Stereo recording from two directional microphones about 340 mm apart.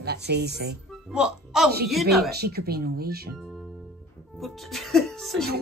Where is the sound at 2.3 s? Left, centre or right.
Right.